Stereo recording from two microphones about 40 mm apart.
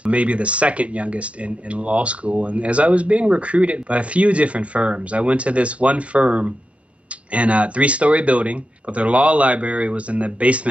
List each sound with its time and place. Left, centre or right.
0.0 s speech: right